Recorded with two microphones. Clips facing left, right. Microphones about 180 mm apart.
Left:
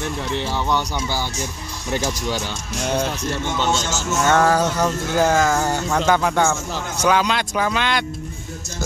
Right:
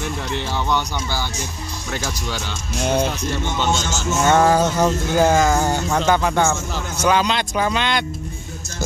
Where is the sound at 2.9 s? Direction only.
5° right (ahead or behind).